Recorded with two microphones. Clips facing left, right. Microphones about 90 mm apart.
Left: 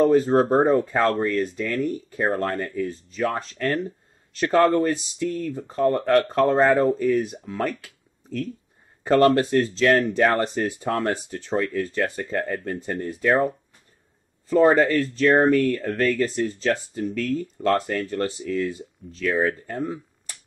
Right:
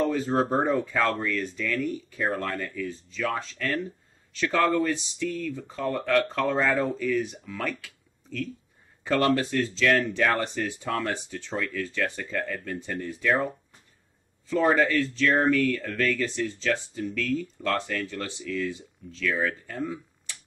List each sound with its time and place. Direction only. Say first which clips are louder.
0.0 s speech: left 7 dB; 40° left (ahead or behind)
14.5 s speech: left 5 dB; 40° left (ahead or behind)